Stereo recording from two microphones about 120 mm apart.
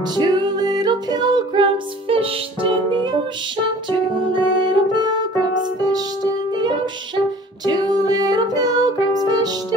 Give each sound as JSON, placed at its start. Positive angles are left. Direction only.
{"t": 0.1, "sound": "music", "side_deg": -35}
{"t": 4.2, "sound": "music", "side_deg": -40}
{"t": 7.6, "sound": "music", "side_deg": -35}